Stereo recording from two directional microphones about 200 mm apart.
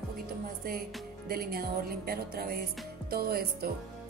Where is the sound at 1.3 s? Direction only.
50° right (ahead or behind).